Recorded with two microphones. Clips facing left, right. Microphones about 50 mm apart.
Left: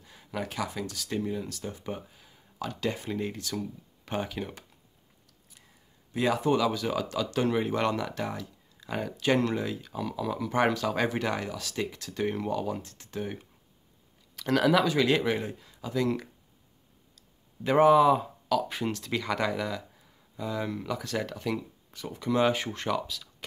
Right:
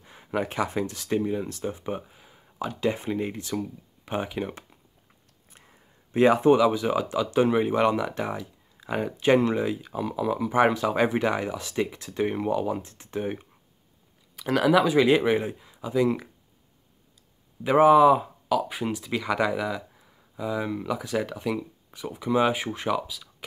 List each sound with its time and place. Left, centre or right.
0.0 s speech: right
5.5 s a sound: right
6.5 s speech: centre
14.3 s speech: centre
17.6 s speech: centre